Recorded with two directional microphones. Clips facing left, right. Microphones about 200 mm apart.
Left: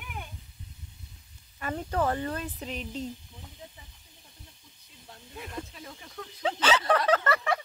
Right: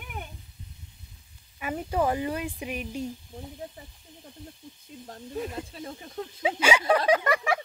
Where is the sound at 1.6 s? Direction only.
10° right (ahead or behind).